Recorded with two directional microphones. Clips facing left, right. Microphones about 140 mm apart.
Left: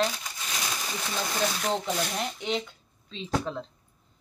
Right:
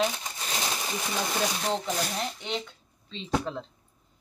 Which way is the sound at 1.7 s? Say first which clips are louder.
Left 1 dB; centre (ahead or behind).